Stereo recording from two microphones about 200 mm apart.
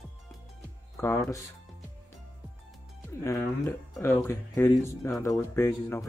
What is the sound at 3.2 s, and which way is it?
Speech, 10° left (ahead or behind).